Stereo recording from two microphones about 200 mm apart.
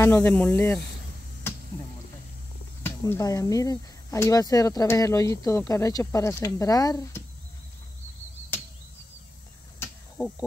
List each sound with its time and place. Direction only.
0.0 s speech: 10° left (ahead or behind)
2.8 s speech: 15° left (ahead or behind)
9.8 s a sound: 5° left (ahead or behind)